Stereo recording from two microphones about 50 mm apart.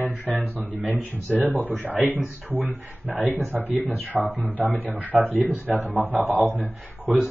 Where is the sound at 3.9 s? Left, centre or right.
Right.